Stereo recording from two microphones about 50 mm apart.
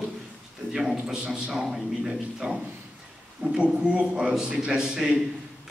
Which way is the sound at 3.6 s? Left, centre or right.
Right.